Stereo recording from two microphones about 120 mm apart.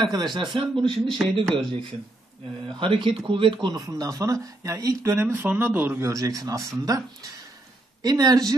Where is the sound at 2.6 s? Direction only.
40° right (ahead or behind).